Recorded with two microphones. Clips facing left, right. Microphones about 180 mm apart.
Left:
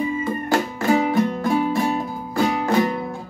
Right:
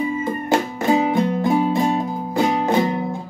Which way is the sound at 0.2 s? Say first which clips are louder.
Right 1 dB; 20° right (ahead or behind).